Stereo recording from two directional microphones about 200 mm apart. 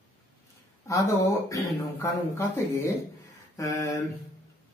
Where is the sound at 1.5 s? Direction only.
15° left (ahead or behind).